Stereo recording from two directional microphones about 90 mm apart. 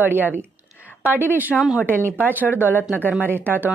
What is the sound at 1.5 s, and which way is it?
Speech, 5° right (ahead or behind).